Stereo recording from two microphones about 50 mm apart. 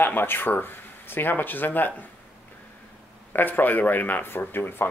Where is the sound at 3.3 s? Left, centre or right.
Left.